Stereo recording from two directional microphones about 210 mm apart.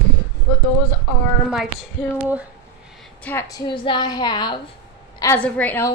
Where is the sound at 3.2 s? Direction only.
10° left (ahead or behind).